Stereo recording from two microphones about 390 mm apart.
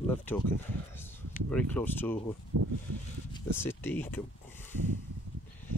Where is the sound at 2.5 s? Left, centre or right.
Right.